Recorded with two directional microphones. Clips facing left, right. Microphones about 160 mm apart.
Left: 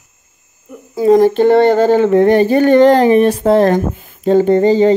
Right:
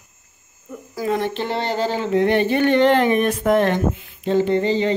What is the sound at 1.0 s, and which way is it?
Speech, 40° left (ahead or behind).